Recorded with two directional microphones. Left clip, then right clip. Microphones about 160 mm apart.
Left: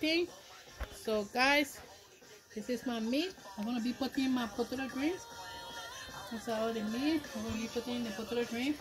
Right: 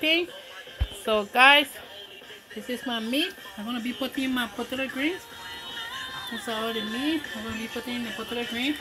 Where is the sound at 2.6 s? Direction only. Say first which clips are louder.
Right 6 dB; 15° left (ahead or behind).